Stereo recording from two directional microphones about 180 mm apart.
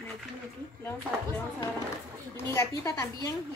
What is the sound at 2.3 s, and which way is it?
Speech, 15° left (ahead or behind).